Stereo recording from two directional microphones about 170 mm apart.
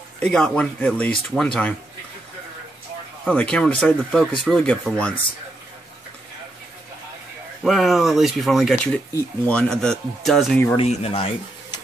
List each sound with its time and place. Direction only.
0.2 s speech: 5° left (ahead or behind)
3.3 s speech: 5° left (ahead or behind)
7.6 s speech: centre (ahead or behind)
10.8 s speech: 35° left (ahead or behind)